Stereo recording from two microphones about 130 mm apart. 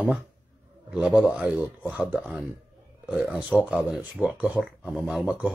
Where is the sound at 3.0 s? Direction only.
5° right (ahead or behind).